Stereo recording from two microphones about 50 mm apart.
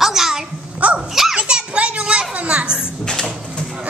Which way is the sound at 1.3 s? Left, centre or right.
Centre.